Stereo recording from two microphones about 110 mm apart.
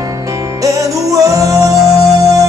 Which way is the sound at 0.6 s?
30° right (ahead or behind).